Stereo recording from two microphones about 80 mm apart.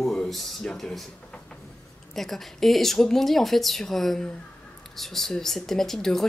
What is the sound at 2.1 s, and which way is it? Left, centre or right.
Speech, centre.